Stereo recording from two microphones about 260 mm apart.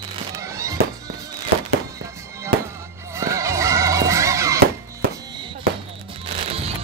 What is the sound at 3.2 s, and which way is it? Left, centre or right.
Neigh, centre.